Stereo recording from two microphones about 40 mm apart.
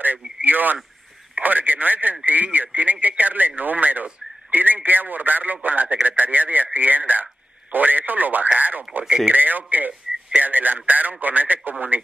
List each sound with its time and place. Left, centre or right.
0.0 s speech: right